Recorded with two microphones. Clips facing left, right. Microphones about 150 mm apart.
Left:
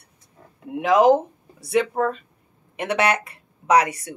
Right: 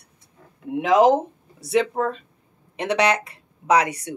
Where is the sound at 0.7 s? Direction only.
25° right (ahead or behind).